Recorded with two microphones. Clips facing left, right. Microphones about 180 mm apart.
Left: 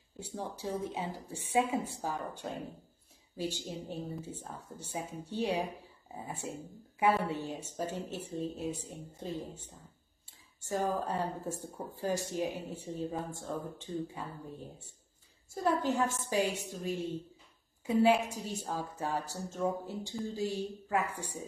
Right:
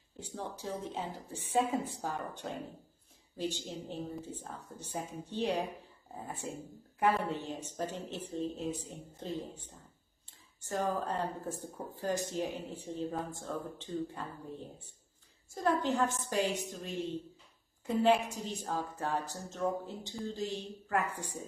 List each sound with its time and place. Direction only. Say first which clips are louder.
0.2 s a woman's voice: left 2 dB; 10° left (ahead or behind)
10.6 s a woman's voice: left 1 dB; 10° left (ahead or behind)
15.5 s a woman's voice: even; 5° left (ahead or behind)